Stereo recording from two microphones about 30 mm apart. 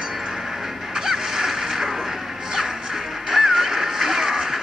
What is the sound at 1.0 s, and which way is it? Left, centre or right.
Music, centre.